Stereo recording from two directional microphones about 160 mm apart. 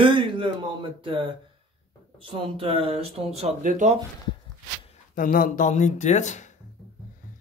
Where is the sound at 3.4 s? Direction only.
50° right (ahead or behind).